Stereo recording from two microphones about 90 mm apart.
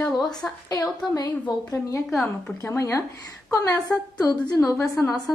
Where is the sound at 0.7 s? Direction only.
45° left (ahead or behind).